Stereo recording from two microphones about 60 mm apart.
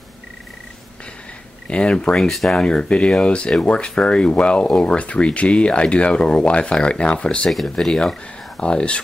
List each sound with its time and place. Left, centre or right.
1.7 s speech: centre
2.1 s speech: centre
2.6 s speech: centre
7.5 s speech: centre